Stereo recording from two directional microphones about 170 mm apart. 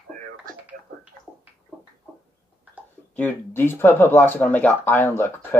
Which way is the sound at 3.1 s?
10° left (ahead or behind).